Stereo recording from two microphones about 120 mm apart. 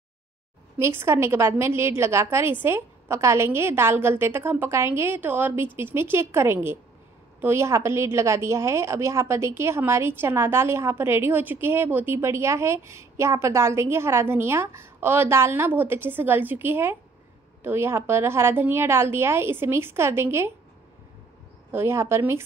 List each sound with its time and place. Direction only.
0.7 s a woman's voice: 20° right (ahead or behind)
21.7 s a woman's voice: 20° right (ahead or behind)